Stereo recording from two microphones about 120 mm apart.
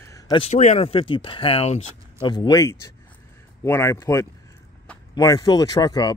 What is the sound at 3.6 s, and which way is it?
Speech, 25° left (ahead or behind).